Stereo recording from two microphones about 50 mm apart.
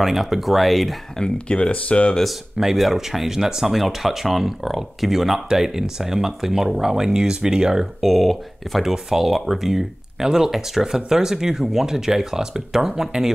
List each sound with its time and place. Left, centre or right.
0.0 s speech: centre
1.1 s speech: centre
2.5 s speech: centre